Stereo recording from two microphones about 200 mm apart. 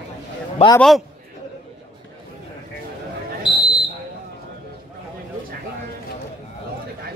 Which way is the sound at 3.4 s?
25° left (ahead or behind).